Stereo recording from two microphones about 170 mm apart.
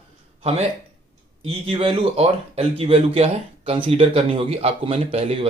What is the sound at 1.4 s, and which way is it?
Speech, 35° right (ahead or behind).